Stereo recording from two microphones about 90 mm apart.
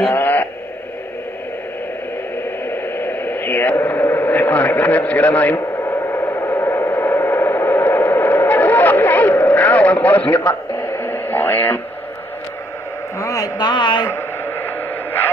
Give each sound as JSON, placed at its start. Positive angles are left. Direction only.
{"t": 0.1, "sound": "speech", "side_deg": 20}
{"t": 2.7, "sound": "radio", "side_deg": 20}
{"t": 3.7, "sound": "a man's voice", "side_deg": 20}
{"t": 5.6, "sound": "a sound", "side_deg": 35}
{"t": 13.2, "sound": "speech", "side_deg": 40}
{"t": 14.0, "sound": "a sound", "side_deg": 25}